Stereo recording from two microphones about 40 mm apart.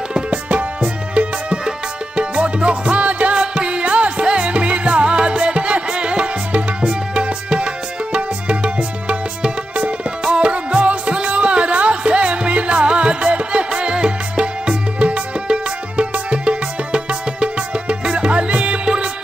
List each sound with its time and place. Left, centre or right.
0.3 s music: right